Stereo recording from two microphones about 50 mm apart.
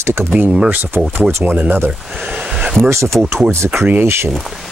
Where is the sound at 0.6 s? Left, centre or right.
Right.